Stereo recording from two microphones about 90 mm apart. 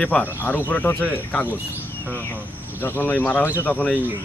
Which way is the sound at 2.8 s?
25° left (ahead or behind).